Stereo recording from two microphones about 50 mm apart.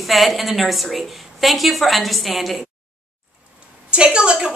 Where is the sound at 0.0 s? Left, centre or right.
Centre.